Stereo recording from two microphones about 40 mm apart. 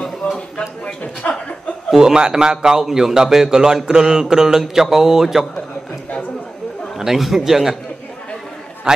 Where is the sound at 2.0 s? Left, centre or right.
Centre.